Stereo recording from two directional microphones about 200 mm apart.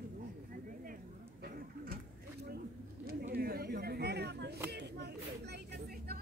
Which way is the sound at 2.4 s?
50° right (ahead or behind).